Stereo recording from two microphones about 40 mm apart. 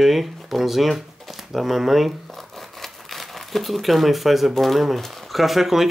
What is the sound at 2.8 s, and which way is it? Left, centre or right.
Crumpling, centre.